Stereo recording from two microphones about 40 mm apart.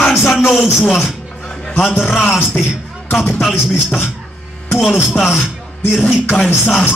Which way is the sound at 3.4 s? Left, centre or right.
Centre.